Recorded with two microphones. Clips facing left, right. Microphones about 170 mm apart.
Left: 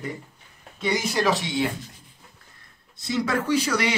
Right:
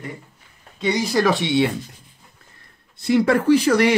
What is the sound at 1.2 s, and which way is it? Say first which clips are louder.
Speech: right 6 dB; 65° right (ahead or behind).